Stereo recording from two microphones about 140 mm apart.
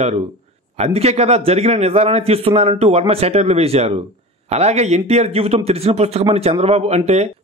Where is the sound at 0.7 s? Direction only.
50° right (ahead or behind).